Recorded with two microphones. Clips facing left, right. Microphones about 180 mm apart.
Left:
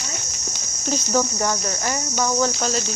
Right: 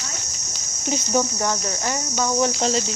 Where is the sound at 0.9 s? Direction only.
15° right (ahead or behind).